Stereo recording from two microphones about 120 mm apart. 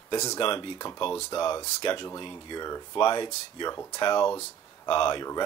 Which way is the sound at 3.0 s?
40° left (ahead or behind).